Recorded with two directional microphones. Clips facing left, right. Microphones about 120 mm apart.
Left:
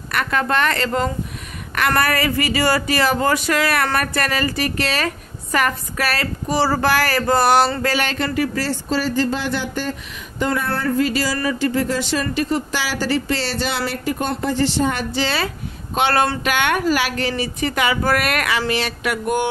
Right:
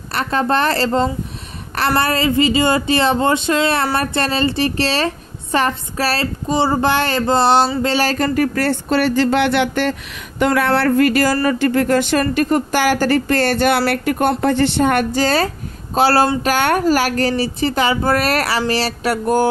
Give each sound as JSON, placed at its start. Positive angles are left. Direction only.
{"t": 0.1, "sound": "speech", "side_deg": -30}
{"t": 10.4, "sound": "a woman's voice", "side_deg": -90}